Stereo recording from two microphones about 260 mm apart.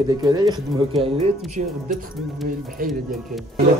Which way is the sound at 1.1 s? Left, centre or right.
Right.